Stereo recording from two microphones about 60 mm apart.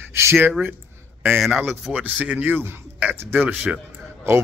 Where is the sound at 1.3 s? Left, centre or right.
Centre.